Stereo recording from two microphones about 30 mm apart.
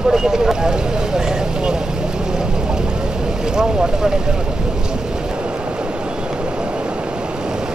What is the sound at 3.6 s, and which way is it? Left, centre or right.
Speech, right.